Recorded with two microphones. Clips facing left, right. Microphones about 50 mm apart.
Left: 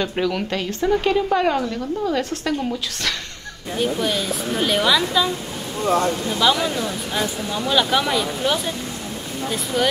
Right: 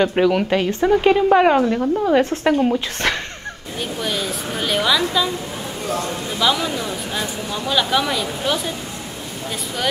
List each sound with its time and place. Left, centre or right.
0.0 s a woman's voice: centre
3.8 s speech: centre
6.4 s speech: centre
9.8 s speech: centre